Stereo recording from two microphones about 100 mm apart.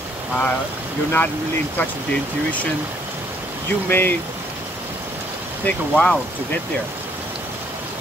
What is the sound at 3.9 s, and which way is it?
Speech, 20° left (ahead or behind).